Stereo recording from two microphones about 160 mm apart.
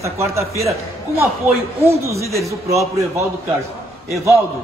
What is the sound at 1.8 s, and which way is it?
A man's voice, 15° right (ahead or behind).